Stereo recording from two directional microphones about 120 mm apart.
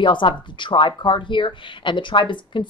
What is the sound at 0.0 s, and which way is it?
Speech, 40° left (ahead or behind).